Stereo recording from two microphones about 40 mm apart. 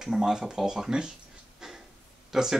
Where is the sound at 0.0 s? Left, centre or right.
Centre.